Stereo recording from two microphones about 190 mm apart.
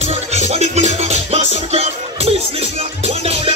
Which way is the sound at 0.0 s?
35° right (ahead or behind).